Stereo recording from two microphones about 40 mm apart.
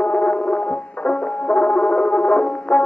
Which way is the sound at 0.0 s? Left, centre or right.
Left.